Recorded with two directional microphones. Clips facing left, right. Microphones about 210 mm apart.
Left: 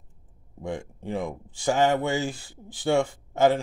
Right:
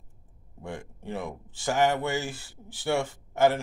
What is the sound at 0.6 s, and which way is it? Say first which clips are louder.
Speech: left 6 dB; 15° left (ahead or behind).